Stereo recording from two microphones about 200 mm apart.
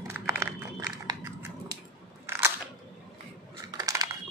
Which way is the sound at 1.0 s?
20° right (ahead or behind).